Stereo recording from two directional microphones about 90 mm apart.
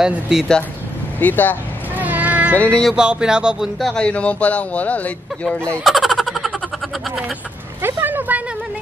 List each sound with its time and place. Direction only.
0.0 s speech: 5° right (ahead or behind)
1.2 s speech: 20° left (ahead or behind)
2.0 s cat: 20° right (ahead or behind)
2.5 s speech: 15° left (ahead or behind)
3.0 s speech: 10° right (ahead or behind)
3.9 s speech: 15° left (ahead or behind)
5.9 s a sound: centre (ahead or behind)
7.8 s a sound: 20° right (ahead or behind)